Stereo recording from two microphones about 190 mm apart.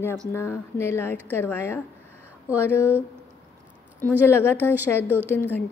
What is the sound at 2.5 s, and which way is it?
Speech, 10° right (ahead or behind).